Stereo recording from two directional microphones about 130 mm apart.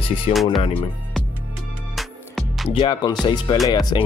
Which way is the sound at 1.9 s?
Centre (ahead or behind).